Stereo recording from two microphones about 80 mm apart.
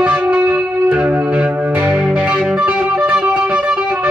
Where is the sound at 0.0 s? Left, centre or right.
Centre.